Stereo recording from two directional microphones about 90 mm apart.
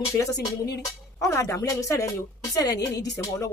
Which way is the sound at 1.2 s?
35° left (ahead or behind).